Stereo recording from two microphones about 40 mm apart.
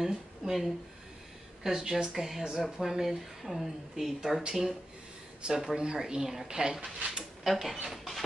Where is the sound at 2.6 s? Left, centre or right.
Centre.